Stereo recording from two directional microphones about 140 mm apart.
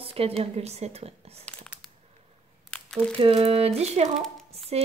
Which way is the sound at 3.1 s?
45° right (ahead or behind).